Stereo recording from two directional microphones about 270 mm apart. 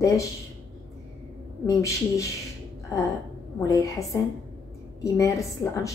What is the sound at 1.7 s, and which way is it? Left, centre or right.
Speech, centre.